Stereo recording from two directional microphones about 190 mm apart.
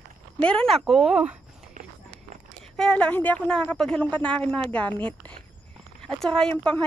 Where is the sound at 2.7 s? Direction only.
5° left (ahead or behind).